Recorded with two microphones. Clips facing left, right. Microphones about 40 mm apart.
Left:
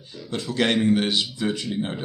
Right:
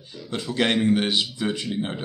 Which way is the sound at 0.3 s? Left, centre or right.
Centre.